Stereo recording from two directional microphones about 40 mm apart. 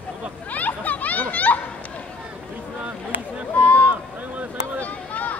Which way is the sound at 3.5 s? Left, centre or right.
Left.